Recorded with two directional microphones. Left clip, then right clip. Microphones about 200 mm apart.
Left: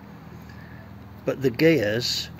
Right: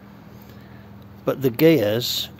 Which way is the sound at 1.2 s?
20° right (ahead or behind).